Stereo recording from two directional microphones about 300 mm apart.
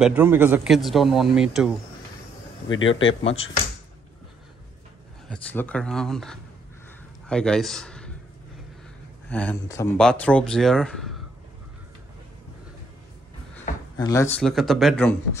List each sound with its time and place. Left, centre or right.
0.0 s speech: centre
2.7 s a man's voice: left
5.3 s a man's voice: centre
9.3 s speech: centre
13.9 s speech: centre